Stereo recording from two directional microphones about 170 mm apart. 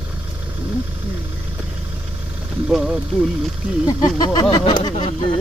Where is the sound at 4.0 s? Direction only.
25° left (ahead or behind).